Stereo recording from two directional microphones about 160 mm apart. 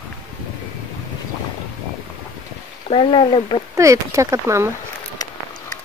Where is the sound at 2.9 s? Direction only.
35° left (ahead or behind).